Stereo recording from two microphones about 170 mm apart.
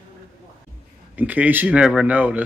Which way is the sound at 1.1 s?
10° right (ahead or behind).